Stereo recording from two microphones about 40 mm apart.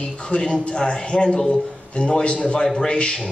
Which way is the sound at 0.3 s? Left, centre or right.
Left.